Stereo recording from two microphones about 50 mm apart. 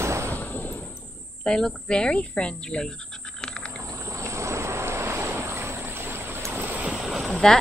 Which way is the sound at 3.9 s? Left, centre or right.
Right.